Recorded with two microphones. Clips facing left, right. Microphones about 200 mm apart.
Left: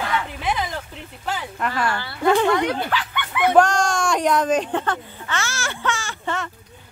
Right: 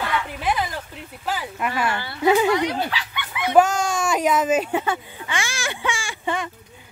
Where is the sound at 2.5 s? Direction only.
50° left (ahead or behind).